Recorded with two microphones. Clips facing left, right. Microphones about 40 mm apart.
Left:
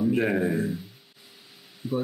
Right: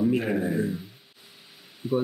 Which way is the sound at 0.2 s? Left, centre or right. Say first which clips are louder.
Left 2 dB; centre.